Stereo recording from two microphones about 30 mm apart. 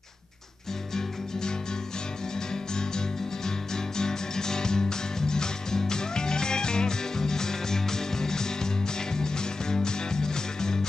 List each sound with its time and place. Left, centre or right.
3.4 s music: left